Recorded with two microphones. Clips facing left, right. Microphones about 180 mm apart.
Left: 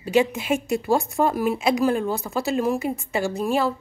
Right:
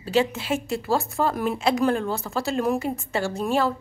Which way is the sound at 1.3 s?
5° left (ahead or behind).